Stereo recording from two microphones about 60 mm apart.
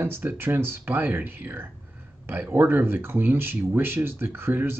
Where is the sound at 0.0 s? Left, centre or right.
Right.